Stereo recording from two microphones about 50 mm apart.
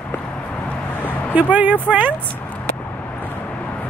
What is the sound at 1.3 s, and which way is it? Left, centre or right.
Speech, right.